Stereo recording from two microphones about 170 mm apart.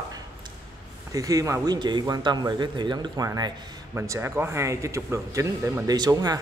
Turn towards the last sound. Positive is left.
turn(degrees=-20)  # may be behind; listen again after turning